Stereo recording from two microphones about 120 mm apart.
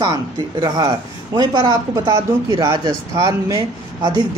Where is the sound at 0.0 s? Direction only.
35° right (ahead or behind).